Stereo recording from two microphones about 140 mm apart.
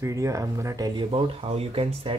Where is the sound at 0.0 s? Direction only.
20° right (ahead or behind).